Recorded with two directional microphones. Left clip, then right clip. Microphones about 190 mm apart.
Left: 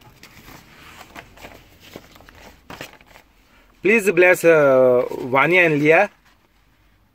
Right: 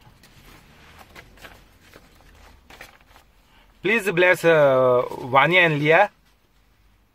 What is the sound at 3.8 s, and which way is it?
Speech, centre (ahead or behind).